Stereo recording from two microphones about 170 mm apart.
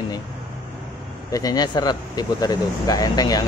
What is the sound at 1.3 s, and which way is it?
Speech, 20° left (ahead or behind).